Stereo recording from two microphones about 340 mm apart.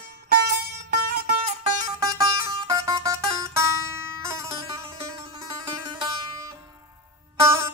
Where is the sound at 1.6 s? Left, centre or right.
Centre.